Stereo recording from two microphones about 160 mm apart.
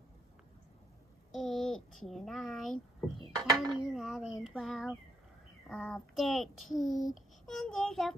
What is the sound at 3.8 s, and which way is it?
A child's voice, centre (ahead or behind).